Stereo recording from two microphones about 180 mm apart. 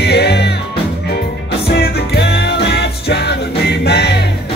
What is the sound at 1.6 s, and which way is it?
Music, 65° left (ahead or behind).